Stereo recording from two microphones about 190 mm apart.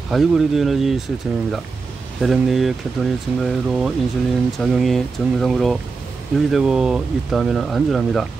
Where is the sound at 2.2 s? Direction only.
Centre (ahead or behind).